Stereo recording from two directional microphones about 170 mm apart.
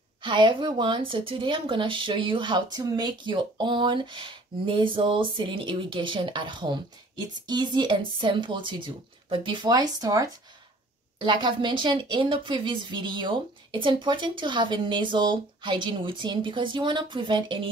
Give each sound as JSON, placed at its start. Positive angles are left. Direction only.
{"t": 0.2, "sound": "a woman's voice", "side_deg": -25}